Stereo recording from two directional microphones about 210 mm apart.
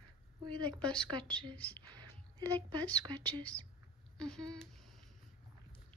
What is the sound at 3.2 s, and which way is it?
A woman's voice, 5° left (ahead or behind).